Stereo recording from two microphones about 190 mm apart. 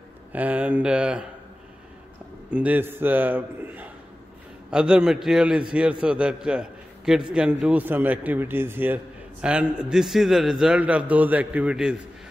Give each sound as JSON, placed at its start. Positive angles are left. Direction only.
{"t": 0.3, "sound": "a man's voice", "side_deg": -10}
{"t": 2.5, "sound": "a man's voice", "side_deg": -10}